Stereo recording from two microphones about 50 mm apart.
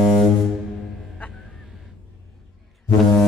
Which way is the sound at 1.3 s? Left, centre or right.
Centre.